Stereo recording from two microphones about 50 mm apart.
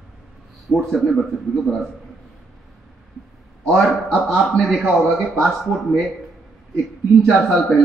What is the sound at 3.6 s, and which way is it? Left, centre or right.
A man's voice, centre.